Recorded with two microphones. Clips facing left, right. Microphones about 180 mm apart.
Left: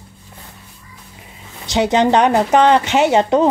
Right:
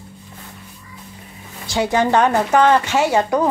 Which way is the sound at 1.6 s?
20° left (ahead or behind).